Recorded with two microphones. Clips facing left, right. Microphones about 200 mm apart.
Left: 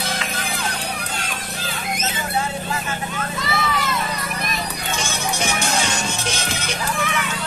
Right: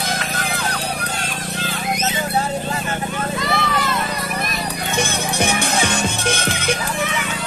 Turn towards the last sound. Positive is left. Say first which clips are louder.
# right 5 dB
turn(degrees=-55)  # may be behind; listen again after turning